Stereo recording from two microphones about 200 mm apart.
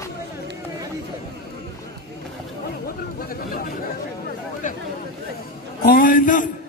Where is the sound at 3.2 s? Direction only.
45° left (ahead or behind).